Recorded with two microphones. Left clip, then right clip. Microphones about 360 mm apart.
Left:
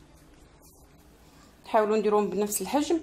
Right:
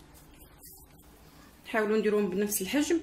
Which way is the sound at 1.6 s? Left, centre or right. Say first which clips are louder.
Left 4 dB; centre.